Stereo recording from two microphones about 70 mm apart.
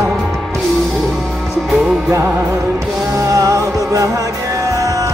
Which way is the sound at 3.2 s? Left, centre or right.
Right.